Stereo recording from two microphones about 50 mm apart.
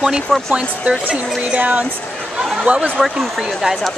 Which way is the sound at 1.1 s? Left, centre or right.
Right.